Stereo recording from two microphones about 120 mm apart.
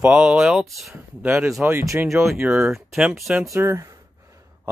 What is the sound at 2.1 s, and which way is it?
Speech, centre (ahead or behind).